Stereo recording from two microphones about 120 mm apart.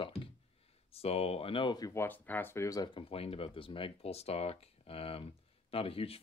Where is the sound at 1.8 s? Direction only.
25° left (ahead or behind).